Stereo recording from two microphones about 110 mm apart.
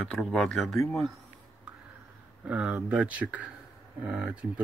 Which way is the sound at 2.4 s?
10° right (ahead or behind).